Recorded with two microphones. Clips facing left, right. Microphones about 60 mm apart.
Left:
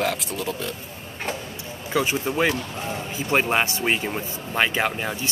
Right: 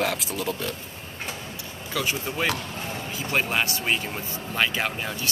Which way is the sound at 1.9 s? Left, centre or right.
Left.